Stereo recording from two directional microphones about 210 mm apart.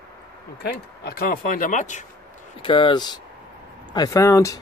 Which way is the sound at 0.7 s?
50° left (ahead or behind).